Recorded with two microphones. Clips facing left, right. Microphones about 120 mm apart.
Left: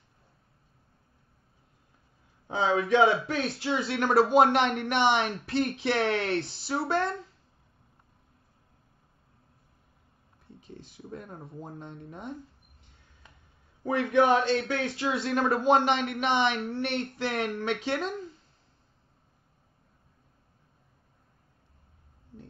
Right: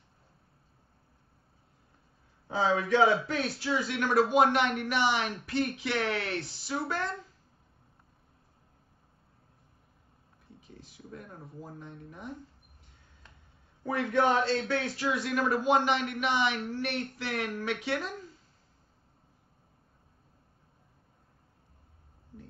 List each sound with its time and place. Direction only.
2.4 s speech: 20° left (ahead or behind)
11.1 s speech: 35° left (ahead or behind)
13.8 s a man's voice: 15° left (ahead or behind)